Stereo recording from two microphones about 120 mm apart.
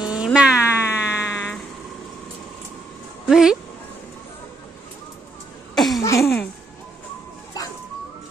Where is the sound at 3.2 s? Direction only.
5° right (ahead or behind).